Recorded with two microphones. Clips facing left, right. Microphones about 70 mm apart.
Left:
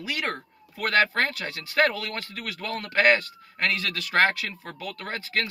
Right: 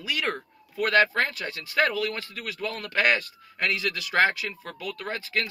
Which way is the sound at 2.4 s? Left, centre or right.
Left.